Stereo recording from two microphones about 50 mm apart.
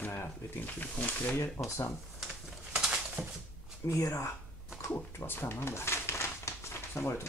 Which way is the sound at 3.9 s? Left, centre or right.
Left.